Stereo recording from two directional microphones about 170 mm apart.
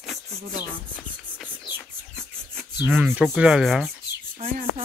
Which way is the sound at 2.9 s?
5° right (ahead or behind).